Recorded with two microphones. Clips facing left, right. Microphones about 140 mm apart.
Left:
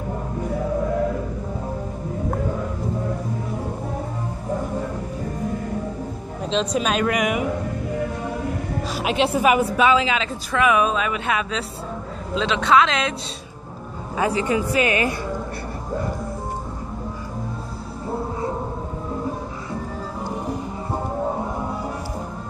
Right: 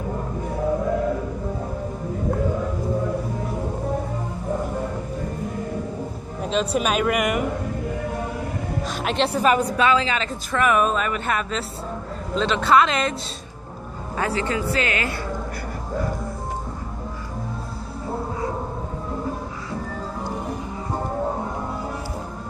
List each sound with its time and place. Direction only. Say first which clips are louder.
6.5 s a woman's voice: even; 5° right (ahead or behind)
9.0 s a woman's voice: left 2 dB; 5° left (ahead or behind)
14.1 s speech: left 3 dB; 15° left (ahead or behind)